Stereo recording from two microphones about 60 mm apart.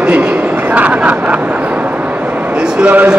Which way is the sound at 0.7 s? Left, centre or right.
Right.